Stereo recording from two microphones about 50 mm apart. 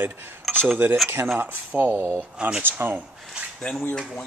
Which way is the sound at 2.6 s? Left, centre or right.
Right.